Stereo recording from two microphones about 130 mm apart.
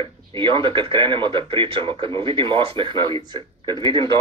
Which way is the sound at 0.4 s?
40° right (ahead or behind).